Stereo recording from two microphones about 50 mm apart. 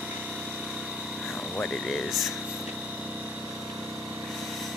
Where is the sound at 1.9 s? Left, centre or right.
Centre.